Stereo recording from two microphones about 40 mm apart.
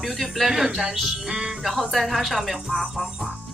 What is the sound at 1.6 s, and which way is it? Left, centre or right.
Speech, centre.